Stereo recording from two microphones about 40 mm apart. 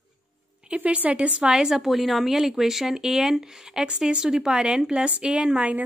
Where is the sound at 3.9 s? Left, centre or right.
Right.